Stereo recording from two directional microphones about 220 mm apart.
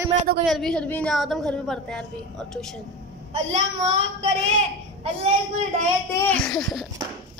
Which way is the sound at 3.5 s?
30° right (ahead or behind).